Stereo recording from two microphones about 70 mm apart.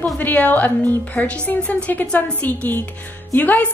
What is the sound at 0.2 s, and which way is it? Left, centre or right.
A woman's voice, left.